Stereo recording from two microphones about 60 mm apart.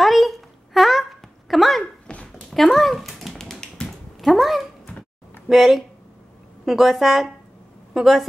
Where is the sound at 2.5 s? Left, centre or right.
Centre.